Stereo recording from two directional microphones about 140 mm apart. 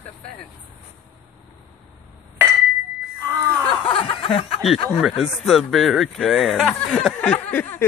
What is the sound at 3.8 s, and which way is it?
Snicker, 40° left (ahead or behind).